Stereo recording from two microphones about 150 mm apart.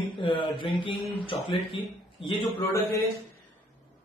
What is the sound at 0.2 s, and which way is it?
Mantra, 35° left (ahead or behind).